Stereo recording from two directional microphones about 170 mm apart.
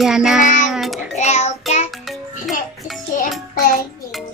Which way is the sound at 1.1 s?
45° left (ahead or behind).